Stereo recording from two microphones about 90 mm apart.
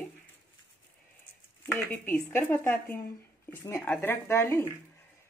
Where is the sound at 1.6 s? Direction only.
25° left (ahead or behind).